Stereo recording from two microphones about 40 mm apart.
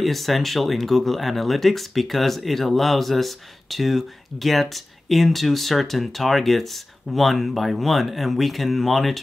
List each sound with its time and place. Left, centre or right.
0.0 s speech: centre